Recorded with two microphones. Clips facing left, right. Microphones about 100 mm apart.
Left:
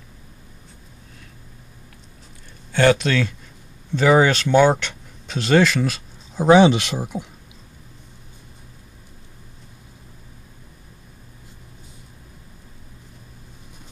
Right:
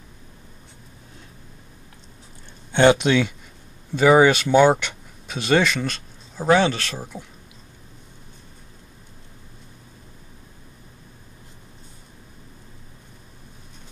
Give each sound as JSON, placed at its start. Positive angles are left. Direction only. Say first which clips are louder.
{"t": 2.7, "sound": "speech", "louder": "right 1 dB", "side_deg": -20}
{"t": 3.9, "sound": "speech", "louder": "right 1 dB", "side_deg": -5}
{"t": 6.4, "sound": "speech", "louder": "left 5 dB", "side_deg": 15}